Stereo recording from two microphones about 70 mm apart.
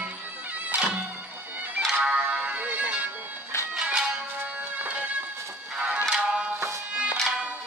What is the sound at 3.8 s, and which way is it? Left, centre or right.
Music, centre.